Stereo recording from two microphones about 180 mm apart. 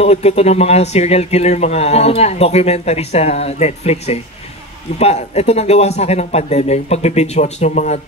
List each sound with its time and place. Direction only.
0.0 s speech: 35° left (ahead or behind)